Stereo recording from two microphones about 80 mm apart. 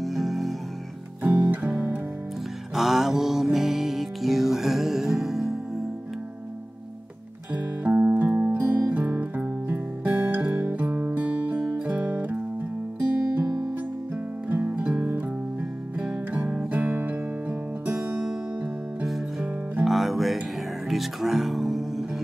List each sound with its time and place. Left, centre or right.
0.0 s music: centre
2.7 s music: centre
7.5 s music: right
16.0 s music: centre
19.8 s music: centre